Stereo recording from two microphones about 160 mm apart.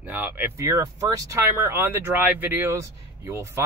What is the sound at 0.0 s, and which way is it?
Speech, 10° right (ahead or behind).